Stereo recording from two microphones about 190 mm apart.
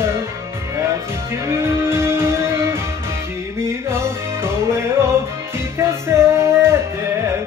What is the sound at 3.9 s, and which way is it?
Music, 15° right (ahead or behind).